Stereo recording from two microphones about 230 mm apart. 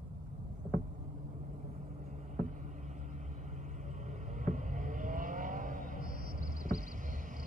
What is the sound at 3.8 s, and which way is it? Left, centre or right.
Vehicle, right.